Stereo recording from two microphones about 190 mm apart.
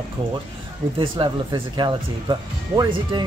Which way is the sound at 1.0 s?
25° right (ahead or behind).